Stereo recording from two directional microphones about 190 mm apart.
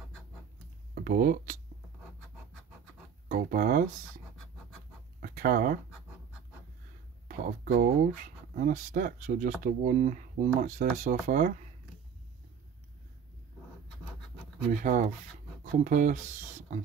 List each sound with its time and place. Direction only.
0.9 s speech: 50° right (ahead or behind)
3.3 s speech: 45° right (ahead or behind)
5.2 s a sound: 45° right (ahead or behind)
7.2 s speech: 45° right (ahead or behind)
14.7 s speech: 40° right (ahead or behind)